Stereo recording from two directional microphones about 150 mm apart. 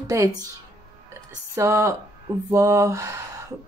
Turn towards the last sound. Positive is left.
turn(degrees=-20)  # may be behind; listen again after turning